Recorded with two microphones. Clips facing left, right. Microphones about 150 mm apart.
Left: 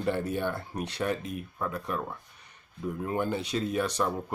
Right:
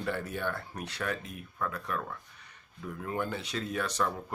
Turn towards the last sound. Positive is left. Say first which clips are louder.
# left 3 dB
turn(degrees=15)  # may be behind; listen again after turning